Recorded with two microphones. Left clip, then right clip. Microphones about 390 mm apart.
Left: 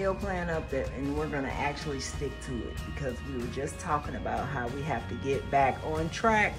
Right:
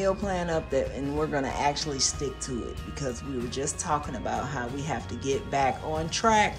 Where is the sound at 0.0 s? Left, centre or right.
Centre.